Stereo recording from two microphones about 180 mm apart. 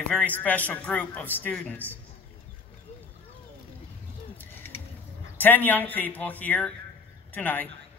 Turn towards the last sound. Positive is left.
turn(degrees=10)  # may be behind; listen again after turning